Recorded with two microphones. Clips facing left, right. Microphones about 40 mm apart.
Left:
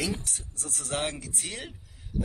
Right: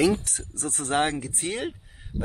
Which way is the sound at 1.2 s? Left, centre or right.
Right.